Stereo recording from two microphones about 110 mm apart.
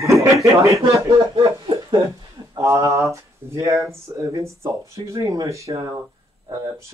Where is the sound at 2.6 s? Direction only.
30° right (ahead or behind).